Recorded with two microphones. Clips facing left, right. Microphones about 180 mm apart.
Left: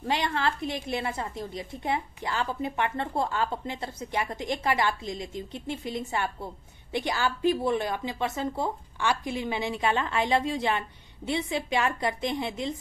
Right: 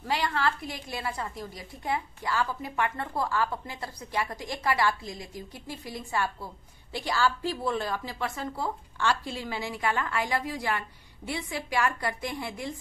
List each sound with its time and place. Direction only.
0.0 s a woman's voice: 20° left (ahead or behind)